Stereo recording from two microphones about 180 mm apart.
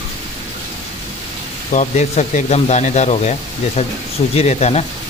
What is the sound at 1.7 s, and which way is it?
Speech, 40° left (ahead or behind).